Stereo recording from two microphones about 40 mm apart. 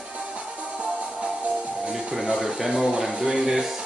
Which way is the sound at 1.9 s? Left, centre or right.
Centre.